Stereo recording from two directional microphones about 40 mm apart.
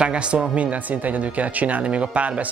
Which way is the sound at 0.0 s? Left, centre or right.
Right.